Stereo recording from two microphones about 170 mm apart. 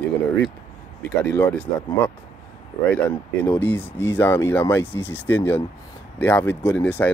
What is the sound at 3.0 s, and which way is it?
Speech, 10° left (ahead or behind).